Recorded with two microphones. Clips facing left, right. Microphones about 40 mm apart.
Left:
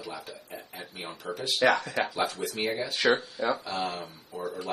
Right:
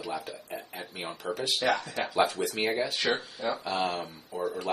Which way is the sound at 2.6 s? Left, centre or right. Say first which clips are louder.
Right 1 dB; right.